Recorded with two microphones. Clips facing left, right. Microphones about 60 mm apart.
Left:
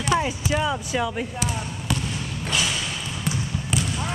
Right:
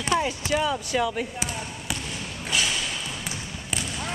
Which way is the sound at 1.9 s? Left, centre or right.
Centre.